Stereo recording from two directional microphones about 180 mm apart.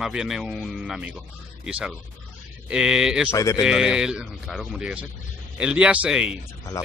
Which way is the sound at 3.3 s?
20° left (ahead or behind).